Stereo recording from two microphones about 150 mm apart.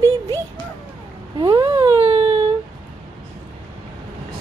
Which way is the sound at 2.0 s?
35° right (ahead or behind).